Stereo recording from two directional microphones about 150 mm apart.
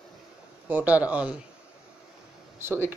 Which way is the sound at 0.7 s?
10° right (ahead or behind).